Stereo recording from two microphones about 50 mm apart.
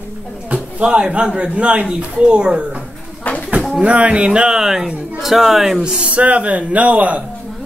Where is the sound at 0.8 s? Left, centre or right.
Centre.